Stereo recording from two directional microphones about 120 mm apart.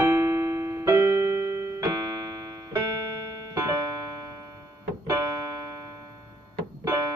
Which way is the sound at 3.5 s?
30° right (ahead or behind).